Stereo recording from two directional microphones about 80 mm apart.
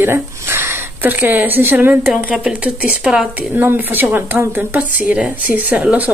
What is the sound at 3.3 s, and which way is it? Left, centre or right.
Speech, right.